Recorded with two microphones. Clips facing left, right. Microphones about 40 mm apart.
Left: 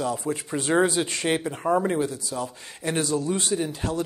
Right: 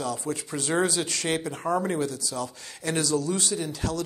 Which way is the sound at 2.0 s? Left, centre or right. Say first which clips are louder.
Left 2 dB; left.